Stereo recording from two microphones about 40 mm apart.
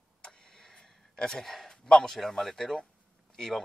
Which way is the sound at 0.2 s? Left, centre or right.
Centre.